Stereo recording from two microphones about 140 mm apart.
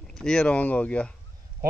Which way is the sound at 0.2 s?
5° left (ahead or behind).